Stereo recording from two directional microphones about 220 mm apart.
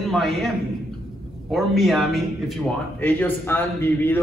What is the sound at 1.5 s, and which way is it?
Speech, centre (ahead or behind).